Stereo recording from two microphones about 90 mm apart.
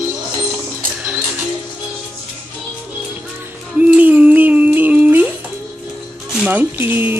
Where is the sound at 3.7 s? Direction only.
20° right (ahead or behind).